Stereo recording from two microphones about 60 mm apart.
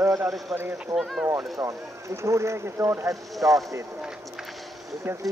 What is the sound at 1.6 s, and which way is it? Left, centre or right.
Speech, right.